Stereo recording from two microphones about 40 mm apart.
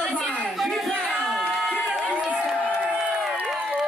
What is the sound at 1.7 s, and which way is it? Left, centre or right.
Run, centre.